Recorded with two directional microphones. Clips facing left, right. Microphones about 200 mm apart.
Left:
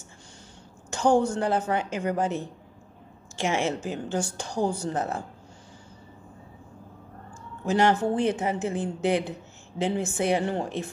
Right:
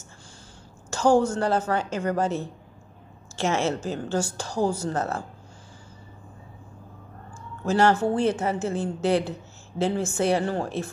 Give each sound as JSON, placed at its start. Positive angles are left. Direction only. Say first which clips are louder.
{"t": 0.8, "sound": "a woman's voice", "louder": "right 2 dB", "side_deg": 15}
{"t": 7.6, "sound": "a woman's voice", "louder": "right 2 dB", "side_deg": 15}